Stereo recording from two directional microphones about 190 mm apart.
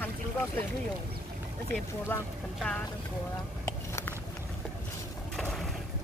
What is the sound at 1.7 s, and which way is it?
Speech, 5° left (ahead or behind).